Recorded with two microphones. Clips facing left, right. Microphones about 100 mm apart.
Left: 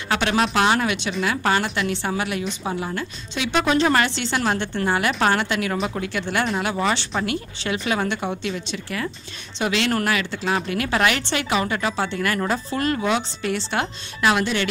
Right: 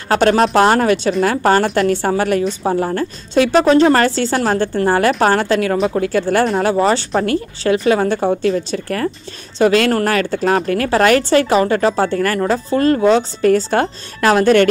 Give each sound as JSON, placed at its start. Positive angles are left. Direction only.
{"t": 0.1, "sound": "a woman's voice", "side_deg": -40}